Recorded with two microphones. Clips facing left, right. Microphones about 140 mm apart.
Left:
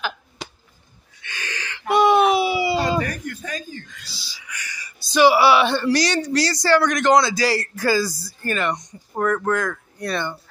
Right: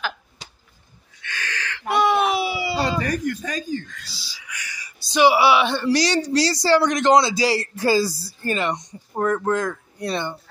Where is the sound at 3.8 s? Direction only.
5° left (ahead or behind).